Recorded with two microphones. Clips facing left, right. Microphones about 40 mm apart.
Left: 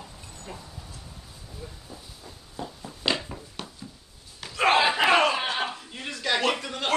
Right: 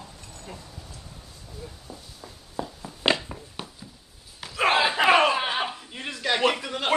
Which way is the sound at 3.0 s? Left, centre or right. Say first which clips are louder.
Right 4 dB; right.